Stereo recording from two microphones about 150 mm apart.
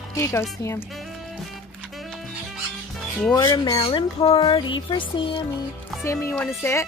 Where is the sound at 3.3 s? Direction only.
25° left (ahead or behind).